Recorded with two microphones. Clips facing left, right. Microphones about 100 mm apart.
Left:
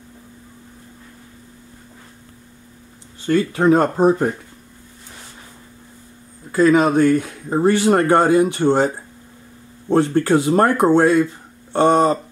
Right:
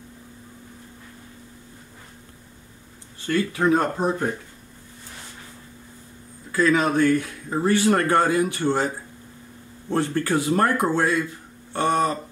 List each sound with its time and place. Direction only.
3.3 s speech: 30° left (ahead or behind)
6.5 s speech: 25° left (ahead or behind)